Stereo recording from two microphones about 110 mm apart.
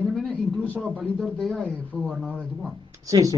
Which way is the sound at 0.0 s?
5° left (ahead or behind).